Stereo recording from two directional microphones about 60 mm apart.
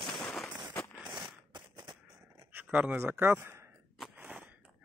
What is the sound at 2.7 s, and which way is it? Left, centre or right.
Speech, right.